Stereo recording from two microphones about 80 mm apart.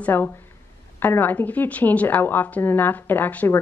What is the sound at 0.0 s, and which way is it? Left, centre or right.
Speech, left.